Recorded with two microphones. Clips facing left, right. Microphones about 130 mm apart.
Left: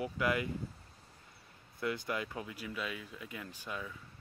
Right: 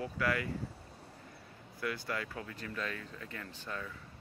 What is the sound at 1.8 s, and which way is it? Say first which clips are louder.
Speech: left 1 dB; 20° left (ahead or behind).